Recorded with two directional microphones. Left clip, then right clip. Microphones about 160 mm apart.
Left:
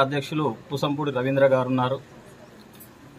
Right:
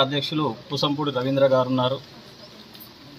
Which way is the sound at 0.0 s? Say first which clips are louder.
Right 1 dB; 5° left (ahead or behind).